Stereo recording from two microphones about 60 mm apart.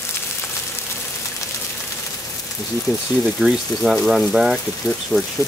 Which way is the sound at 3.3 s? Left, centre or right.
Centre.